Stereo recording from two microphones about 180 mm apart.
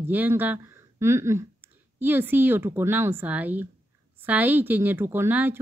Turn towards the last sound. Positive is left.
turn(degrees=-10)  # may be behind; listen again after turning